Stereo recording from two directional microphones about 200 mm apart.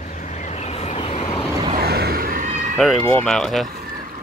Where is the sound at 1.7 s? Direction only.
55° right (ahead or behind).